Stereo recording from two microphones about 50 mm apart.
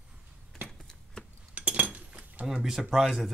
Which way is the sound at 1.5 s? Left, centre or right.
Right.